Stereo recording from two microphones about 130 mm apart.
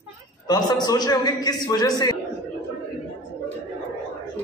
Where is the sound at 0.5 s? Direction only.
30° left (ahead or behind).